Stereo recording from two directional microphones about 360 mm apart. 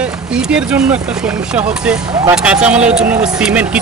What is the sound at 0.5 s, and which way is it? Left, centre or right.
Speech, centre.